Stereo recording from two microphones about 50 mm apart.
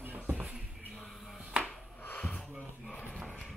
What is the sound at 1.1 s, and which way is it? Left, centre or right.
Finger snapping, centre.